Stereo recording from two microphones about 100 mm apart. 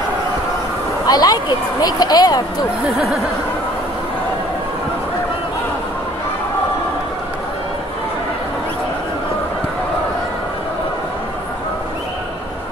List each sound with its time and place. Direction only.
1.0 s speech: 40° left (ahead or behind)
3.0 s speech: centre (ahead or behind)